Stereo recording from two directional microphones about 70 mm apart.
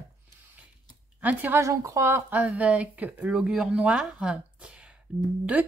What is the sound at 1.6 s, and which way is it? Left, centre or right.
Speech, right.